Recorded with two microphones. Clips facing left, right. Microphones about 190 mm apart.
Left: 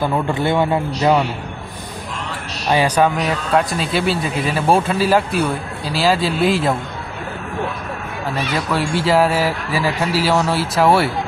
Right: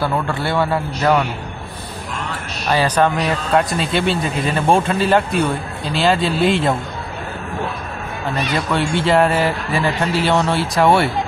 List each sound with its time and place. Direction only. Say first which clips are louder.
0.0 s a man's voice: left 2 dB; 15° left (ahead or behind)
2.7 s speech: left 1 dB; 10° left (ahead or behind)
8.4 s speech: right 1 dB; 5° left (ahead or behind)